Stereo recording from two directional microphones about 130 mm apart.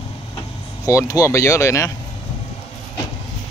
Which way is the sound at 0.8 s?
25° left (ahead or behind).